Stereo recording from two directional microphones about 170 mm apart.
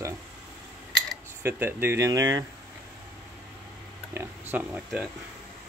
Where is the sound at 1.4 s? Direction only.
10° right (ahead or behind).